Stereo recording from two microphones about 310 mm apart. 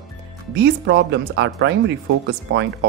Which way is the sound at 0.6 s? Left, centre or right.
Right.